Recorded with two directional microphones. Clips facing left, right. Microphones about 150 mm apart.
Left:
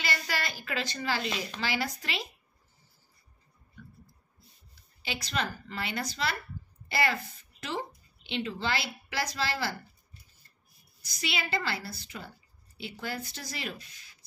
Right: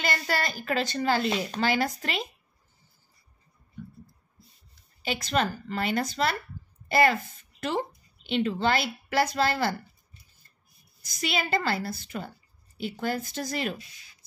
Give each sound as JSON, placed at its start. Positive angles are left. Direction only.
{"t": 0.0, "sound": "a woman's voice", "side_deg": -45}
{"t": 5.0, "sound": "a woman's voice", "side_deg": -45}
{"t": 8.3, "sound": "a woman's voice", "side_deg": -50}
{"t": 11.1, "sound": "a woman's voice", "side_deg": -45}